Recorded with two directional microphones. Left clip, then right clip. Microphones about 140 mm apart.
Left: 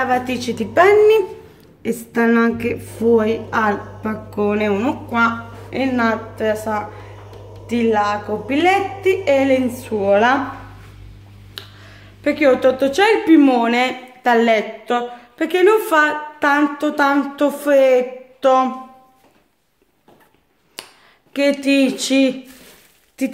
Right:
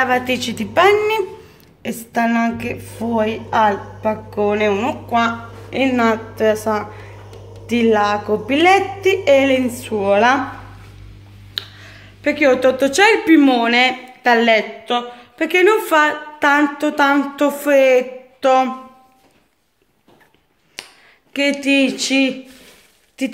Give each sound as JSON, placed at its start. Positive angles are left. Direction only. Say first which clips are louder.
{"t": 0.0, "sound": "speech", "louder": "right 2 dB", "side_deg": 0}
{"t": 1.8, "sound": "a woman's voice", "louder": "even", "side_deg": -25}
{"t": 4.6, "sound": "speech", "louder": "right 2 dB", "side_deg": -30}
{"t": 5.7, "sound": "speech", "louder": "right 2 dB", "side_deg": -10}
{"t": 6.3, "sound": "a woman's voice", "louder": "right 3 dB", "side_deg": -35}
{"t": 9.5, "sound": "speech", "louder": "even", "side_deg": 0}
{"t": 11.5, "sound": "speech", "louder": "right 7 dB", "side_deg": 0}
{"t": 13.5, "sound": "speech", "louder": "right 2 dB", "side_deg": 10}
{"t": 20.8, "sound": "a sound", "louder": "right 1 dB", "side_deg": 25}
{"t": 21.3, "sound": "speech", "louder": "even", "side_deg": 15}